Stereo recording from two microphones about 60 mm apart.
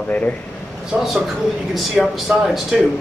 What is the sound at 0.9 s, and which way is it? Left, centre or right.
Speech, right.